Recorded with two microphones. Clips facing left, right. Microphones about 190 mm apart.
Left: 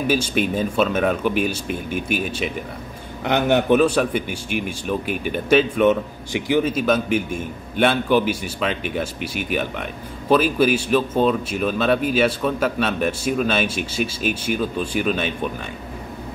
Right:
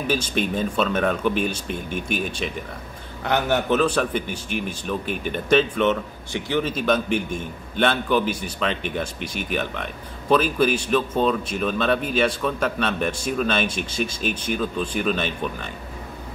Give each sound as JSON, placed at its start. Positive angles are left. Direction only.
{"t": 0.0, "sound": "speech", "side_deg": 10}
{"t": 3.3, "sound": "a man's voice", "side_deg": 20}
{"t": 3.8, "sound": "speech", "side_deg": 10}